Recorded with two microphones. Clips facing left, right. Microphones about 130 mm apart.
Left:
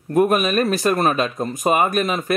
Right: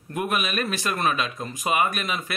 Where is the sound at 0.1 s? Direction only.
40° left (ahead or behind).